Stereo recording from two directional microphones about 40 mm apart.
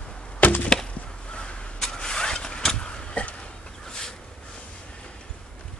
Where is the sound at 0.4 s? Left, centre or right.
Left.